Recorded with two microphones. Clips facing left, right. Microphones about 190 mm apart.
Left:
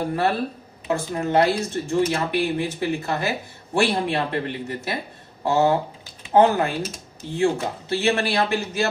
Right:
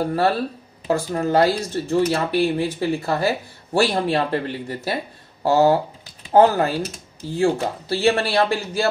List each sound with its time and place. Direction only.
0.8 s speech: 35° right (ahead or behind)